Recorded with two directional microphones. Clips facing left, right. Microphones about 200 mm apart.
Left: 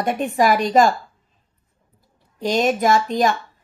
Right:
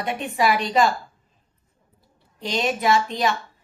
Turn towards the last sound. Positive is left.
turn(degrees=45)  # may be behind; listen again after turning